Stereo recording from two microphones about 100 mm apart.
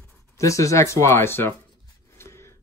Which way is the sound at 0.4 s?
30° left (ahead or behind).